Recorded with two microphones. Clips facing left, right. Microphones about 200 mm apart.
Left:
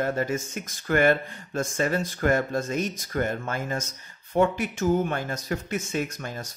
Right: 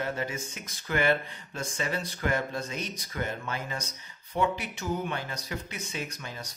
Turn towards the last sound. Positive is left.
turn(degrees=50)  # may be behind; listen again after turning